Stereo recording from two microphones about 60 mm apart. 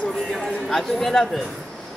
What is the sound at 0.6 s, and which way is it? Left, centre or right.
Speech, centre.